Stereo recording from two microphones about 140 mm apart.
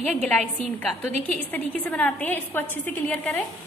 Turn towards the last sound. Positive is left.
turn(degrees=10)  # may be behind; listen again after turning